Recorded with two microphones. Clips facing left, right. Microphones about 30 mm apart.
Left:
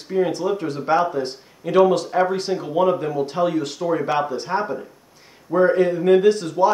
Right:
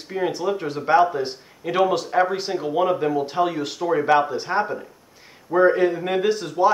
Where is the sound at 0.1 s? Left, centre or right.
Centre.